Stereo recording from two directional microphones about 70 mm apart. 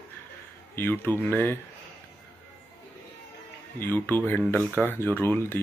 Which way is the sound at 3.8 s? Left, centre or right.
Left.